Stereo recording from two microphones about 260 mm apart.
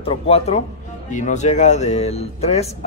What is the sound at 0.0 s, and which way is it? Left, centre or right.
Speech, left.